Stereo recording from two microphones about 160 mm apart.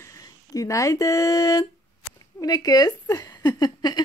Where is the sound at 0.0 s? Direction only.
20° left (ahead or behind).